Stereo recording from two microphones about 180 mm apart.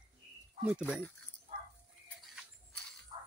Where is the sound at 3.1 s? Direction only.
25° right (ahead or behind).